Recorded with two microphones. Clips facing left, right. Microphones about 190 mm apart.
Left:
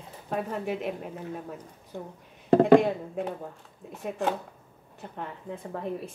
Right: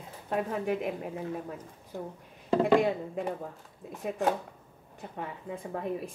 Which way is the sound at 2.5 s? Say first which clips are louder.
Left 6 dB; 50° left (ahead or behind).